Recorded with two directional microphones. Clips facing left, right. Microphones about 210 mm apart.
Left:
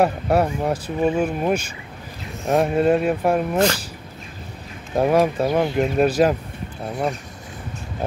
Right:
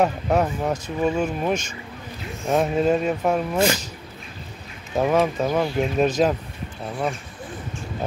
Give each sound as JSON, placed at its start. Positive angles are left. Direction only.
{"t": 0.0, "sound": "speech", "side_deg": 10}
{"t": 3.5, "sound": "speech", "side_deg": -10}
{"t": 4.9, "sound": "speech", "side_deg": 10}